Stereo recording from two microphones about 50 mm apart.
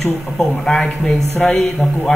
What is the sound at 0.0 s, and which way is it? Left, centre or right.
A man's voice, centre.